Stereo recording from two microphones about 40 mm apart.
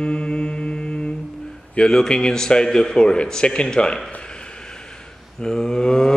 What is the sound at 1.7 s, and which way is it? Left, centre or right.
A man's voice, centre.